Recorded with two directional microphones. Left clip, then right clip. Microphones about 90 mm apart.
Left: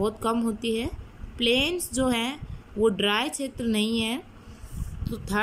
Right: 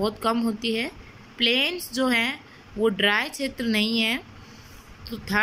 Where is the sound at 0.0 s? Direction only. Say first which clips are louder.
Right 2 dB; 35° left (ahead or behind).